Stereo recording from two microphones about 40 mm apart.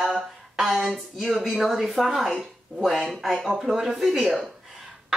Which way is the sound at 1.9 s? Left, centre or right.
Centre.